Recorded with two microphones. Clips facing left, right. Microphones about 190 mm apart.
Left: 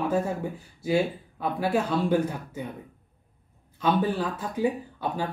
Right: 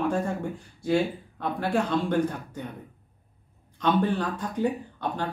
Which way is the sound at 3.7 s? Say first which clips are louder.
Right 1 dB; 5° left (ahead or behind).